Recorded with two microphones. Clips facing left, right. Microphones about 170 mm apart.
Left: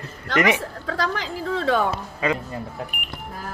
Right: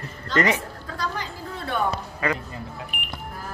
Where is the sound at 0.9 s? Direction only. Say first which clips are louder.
Left 5 dB; 90° left.